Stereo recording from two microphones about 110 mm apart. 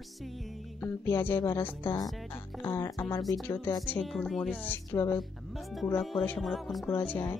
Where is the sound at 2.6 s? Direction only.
25° left (ahead or behind).